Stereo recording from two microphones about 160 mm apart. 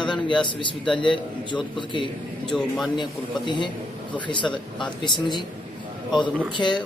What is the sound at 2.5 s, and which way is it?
Speech, 5° left (ahead or behind).